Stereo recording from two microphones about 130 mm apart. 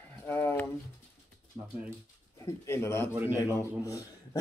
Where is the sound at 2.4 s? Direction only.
20° left (ahead or behind).